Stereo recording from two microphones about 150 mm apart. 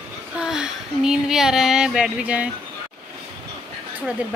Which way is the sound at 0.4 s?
5° right (ahead or behind).